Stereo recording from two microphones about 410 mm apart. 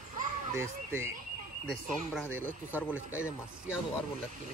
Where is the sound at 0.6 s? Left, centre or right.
Centre.